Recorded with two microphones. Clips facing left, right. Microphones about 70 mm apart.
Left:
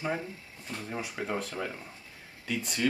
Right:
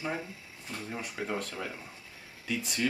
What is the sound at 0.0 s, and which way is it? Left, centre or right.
Speech, centre.